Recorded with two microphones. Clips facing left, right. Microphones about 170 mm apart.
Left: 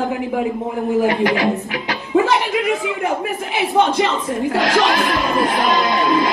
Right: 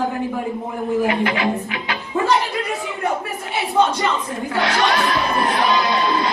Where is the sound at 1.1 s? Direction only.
40° left (ahead or behind).